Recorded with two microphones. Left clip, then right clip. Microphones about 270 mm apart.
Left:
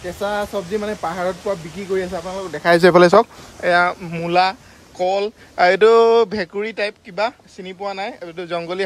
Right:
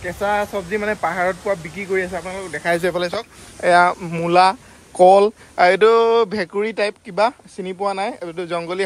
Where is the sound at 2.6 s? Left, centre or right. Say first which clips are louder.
Left 9 dB; left.